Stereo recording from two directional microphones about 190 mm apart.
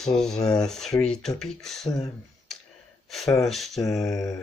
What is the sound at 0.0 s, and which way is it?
Speech, centre (ahead or behind).